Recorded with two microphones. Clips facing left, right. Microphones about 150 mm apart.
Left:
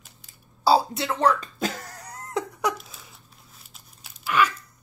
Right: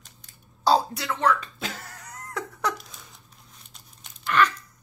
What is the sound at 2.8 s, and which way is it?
Crumpling, 5° left (ahead or behind).